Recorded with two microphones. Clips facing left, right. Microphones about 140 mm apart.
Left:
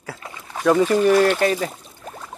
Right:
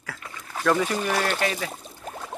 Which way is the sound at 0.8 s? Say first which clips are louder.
Left 10 dB; 40° left (ahead or behind).